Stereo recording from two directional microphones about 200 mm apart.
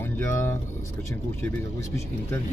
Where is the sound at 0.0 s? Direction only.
10° left (ahead or behind).